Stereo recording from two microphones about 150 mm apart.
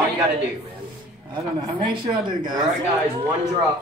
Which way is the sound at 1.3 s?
30° right (ahead or behind).